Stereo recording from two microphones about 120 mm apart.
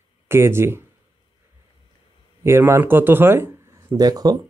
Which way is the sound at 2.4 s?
20° right (ahead or behind).